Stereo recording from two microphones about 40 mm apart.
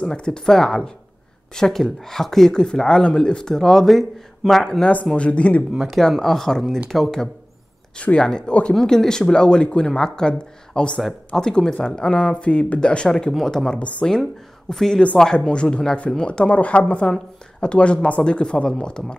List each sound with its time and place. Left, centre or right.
0.1 s speech: centre
4.6 s speech: centre
5.1 s speech: left
5.9 s speech: centre
8.0 s speech: left
13.4 s speech: centre
13.7 s speech: left
14.7 s speech: centre
15.5 s speech: left